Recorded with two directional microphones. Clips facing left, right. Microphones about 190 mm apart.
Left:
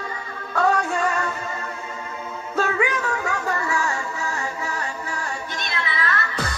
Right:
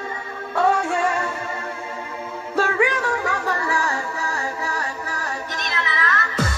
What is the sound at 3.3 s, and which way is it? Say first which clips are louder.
Music: right 1 dB; 35° right (ahead or behind).